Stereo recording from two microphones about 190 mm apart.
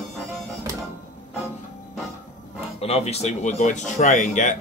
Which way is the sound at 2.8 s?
30° left (ahead or behind).